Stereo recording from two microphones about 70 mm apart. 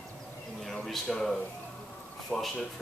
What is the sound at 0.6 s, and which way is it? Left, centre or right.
Speech, centre.